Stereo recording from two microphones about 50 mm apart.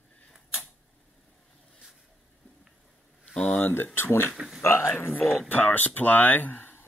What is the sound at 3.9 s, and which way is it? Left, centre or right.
Speech, left.